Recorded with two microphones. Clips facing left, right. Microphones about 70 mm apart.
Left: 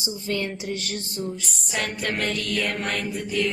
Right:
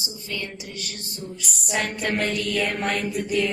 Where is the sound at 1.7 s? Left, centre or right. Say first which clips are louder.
Right 2 dB; centre.